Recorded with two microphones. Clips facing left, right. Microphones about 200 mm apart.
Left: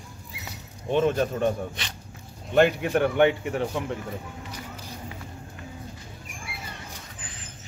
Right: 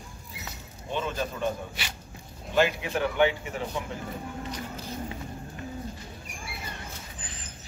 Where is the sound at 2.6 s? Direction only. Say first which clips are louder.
Left 5 dB; 55° left (ahead or behind).